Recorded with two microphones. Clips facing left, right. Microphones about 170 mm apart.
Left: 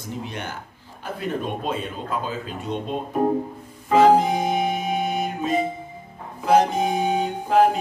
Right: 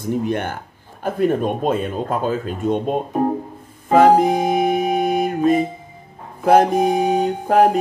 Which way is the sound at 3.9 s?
50° right (ahead or behind).